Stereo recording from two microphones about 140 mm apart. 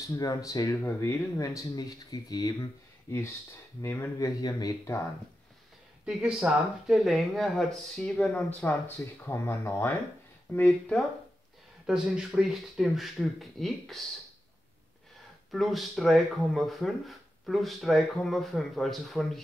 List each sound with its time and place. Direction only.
0.0 s speech: 25° left (ahead or behind)
6.0 s speech: 5° right (ahead or behind); by 11.0 s 15° left (ahead or behind)
11.8 s speech: 5° right (ahead or behind)
15.5 s speech: centre (ahead or behind)